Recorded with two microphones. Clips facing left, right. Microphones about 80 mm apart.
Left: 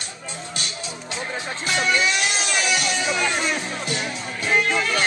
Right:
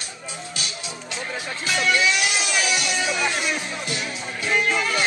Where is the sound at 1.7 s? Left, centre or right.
Left.